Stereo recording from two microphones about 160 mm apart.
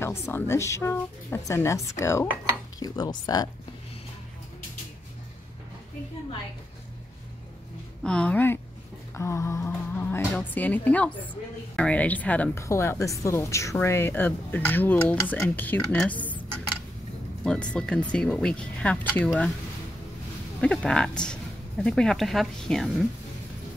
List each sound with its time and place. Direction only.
0.0 s speech: 15° left (ahead or behind)
8.0 s speech: 5° left (ahead or behind)
20.6 s speech: 5° left (ahead or behind)